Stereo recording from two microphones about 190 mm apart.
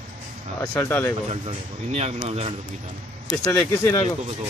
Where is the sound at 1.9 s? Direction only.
35° right (ahead or behind).